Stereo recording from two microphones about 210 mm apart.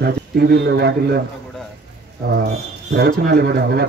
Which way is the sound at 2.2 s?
45° right (ahead or behind).